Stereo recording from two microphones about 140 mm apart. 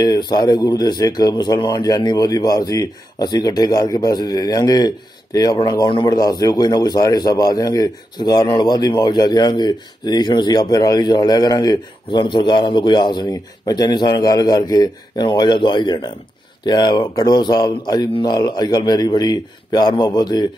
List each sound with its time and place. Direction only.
0.0 s speech: 30° left (ahead or behind)